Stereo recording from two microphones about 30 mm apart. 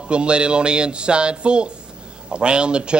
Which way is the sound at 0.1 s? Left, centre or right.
Right.